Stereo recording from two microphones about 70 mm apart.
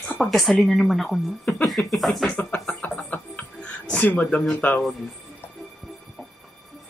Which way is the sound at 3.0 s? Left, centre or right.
Left.